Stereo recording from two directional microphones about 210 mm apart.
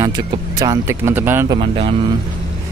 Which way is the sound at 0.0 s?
20° right (ahead or behind).